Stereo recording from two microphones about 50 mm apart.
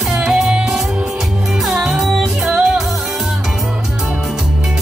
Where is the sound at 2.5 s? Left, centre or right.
Centre.